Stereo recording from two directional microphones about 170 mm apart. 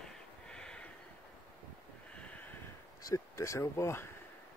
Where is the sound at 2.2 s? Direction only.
10° left (ahead or behind).